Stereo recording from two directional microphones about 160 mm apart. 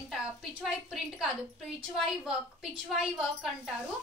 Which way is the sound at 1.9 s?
Centre (ahead or behind).